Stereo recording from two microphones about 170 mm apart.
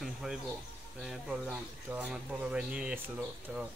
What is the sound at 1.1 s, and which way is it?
Speech, 5° right (ahead or behind).